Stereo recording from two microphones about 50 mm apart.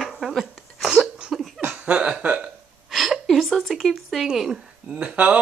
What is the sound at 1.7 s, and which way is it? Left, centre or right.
Laughter, right.